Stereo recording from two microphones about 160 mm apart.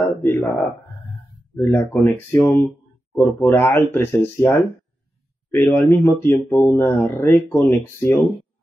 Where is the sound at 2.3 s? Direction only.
15° left (ahead or behind).